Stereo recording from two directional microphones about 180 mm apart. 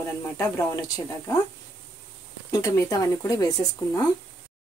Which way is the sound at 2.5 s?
15° left (ahead or behind).